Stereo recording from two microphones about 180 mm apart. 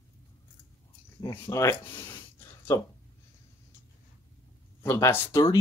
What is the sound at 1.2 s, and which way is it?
Speech, 15° left (ahead or behind).